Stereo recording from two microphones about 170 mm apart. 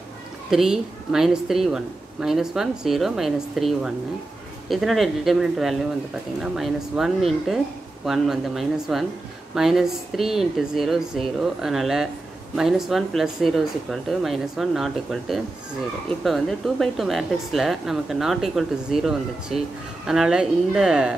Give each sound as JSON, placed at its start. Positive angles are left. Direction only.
{"t": 0.5, "sound": "a woman's voice", "side_deg": -5}